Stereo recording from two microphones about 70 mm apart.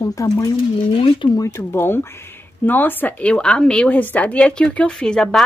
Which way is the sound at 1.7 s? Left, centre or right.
Left.